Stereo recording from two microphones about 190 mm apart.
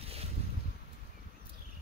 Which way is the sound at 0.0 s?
30° right (ahead or behind).